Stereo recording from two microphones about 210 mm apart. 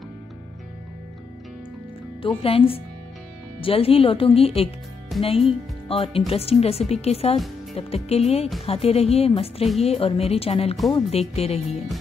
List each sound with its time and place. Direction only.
2.2 s speech: 25° left (ahead or behind)